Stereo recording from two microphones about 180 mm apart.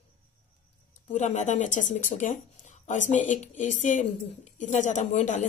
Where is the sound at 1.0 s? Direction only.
40° left (ahead or behind).